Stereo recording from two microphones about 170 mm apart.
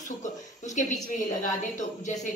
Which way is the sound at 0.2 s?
45° left (ahead or behind).